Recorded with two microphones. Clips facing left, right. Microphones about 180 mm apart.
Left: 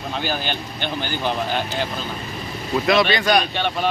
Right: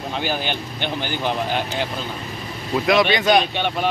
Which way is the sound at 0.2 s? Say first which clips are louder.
Right 1 dB; 15° right (ahead or behind).